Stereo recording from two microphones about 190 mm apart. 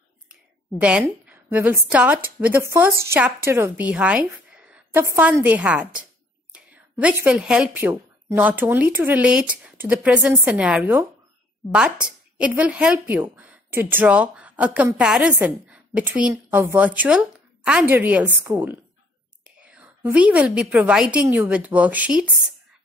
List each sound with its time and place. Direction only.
0.7 s a woman's voice: 5° right (ahead or behind)
6.5 s whispering: 5° right (ahead or behind)
7.2 s speech: 5° right (ahead or behind)